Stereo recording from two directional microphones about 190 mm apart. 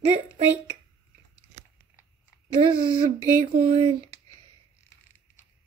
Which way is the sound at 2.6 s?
25° right (ahead or behind).